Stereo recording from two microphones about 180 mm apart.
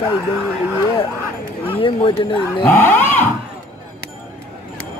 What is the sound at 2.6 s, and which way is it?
Speech, 10° left (ahead or behind).